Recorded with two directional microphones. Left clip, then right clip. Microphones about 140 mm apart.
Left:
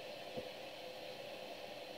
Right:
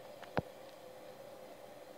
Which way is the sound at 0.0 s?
20° left (ahead or behind).